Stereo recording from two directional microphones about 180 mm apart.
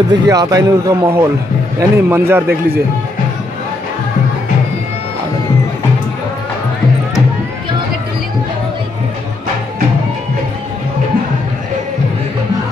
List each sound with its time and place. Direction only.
0.1 s a man's voice: 20° right (ahead or behind)